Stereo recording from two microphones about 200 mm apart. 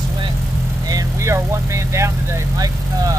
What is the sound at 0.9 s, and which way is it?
Vehicle, 15° right (ahead or behind).